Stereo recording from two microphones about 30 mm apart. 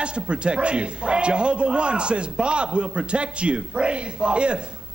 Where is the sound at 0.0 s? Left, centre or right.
Right.